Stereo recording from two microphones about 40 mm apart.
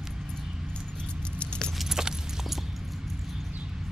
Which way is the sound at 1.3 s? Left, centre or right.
Left.